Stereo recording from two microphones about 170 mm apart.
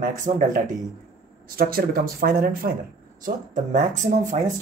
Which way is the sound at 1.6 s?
60° right (ahead or behind).